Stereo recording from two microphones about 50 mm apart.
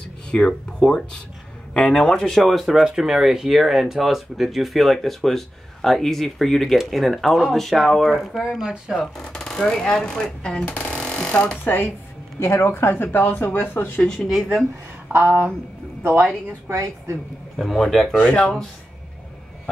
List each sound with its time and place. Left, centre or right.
0.3 s speech: centre
2.4 s speech: centre
8.4 s speech: centre
9.0 s speech: centre
11.0 s a sound: left
11.6 s speech: left
12.4 s speech: left
13.4 s speech: left
15.1 s speech: right
16.6 s a woman's voice: right
17.6 s speech: centre
18.1 s speech: left